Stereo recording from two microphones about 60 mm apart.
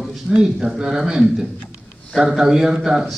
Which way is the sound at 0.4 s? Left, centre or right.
Centre.